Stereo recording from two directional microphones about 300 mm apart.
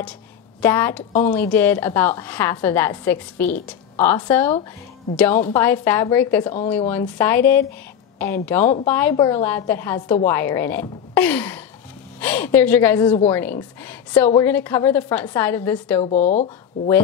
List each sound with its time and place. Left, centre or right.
0.6 s a woman's voice: centre
16.0 s speech: left